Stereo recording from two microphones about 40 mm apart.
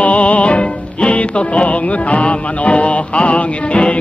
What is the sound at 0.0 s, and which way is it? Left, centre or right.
Music, left.